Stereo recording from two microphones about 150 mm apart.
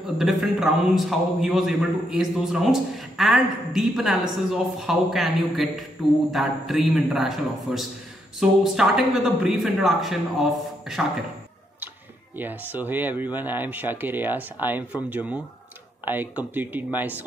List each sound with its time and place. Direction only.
0.2 s a man's voice: centre (ahead or behind)
12.4 s speech: 15° right (ahead or behind)